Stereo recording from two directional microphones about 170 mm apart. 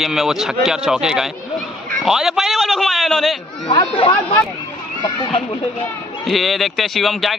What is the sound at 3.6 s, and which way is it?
Speech, 30° left (ahead or behind).